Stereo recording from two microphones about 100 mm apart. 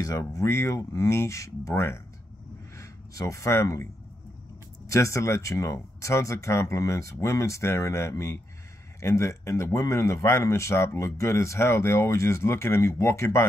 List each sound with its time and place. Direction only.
0.0 s speech: 35° left (ahead or behind)